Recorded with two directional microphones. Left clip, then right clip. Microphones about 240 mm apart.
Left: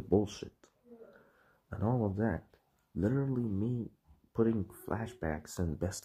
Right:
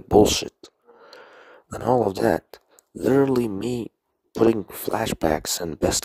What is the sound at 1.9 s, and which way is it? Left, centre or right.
Speech, right.